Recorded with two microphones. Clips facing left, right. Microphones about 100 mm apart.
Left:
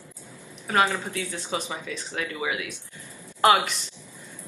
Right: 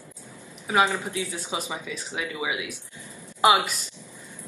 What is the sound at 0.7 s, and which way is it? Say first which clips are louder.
Speech: right 1 dB; 15° right (ahead or behind).